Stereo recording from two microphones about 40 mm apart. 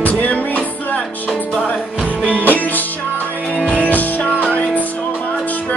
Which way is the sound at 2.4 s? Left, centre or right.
Left.